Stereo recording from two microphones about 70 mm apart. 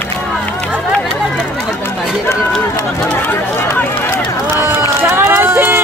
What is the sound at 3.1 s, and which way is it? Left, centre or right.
Run, left.